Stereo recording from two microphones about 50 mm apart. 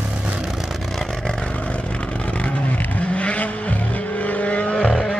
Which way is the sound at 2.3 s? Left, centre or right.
Left.